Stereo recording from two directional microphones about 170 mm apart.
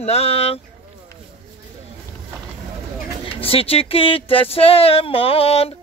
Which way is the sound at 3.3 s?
35° left (ahead or behind).